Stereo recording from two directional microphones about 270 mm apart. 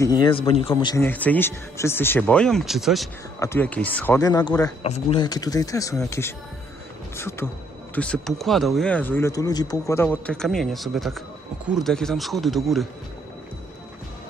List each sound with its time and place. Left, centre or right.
0.0 s speech: centre